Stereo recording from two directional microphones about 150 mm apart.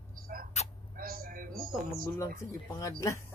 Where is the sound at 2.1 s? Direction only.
25° left (ahead or behind).